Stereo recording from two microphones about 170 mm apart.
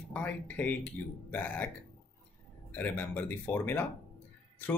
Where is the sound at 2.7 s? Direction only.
10° left (ahead or behind).